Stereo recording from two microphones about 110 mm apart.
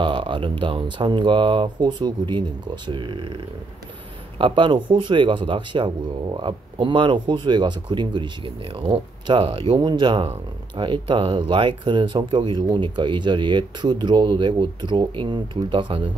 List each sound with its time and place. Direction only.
0.0 s speech: 50° right (ahead or behind)
4.4 s speech: 50° right (ahead or behind)
9.8 s speech: 45° right (ahead or behind)